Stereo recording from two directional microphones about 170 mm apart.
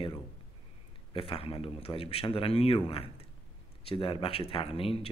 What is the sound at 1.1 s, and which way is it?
Speech, 35° left (ahead or behind).